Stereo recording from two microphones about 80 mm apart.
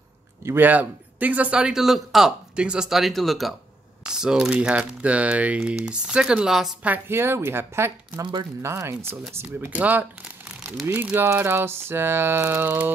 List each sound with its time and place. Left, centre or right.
0.4 s speech: right; by 3.5 s centre
4.0 s speech: centre
7.1 s speech: right
8.2 s speech: right
8.6 s speech: right
9.8 s crumpling: centre
10.9 s a sound: right